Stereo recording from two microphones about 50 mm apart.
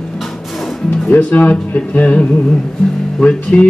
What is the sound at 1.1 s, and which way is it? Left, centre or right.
Speech, left.